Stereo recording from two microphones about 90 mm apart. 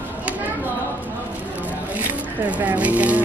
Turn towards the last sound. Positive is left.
turn(degrees=-15)  # may be behind; listen again after turning